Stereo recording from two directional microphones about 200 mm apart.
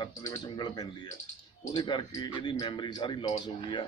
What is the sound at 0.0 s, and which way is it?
Speech, 20° left (ahead or behind).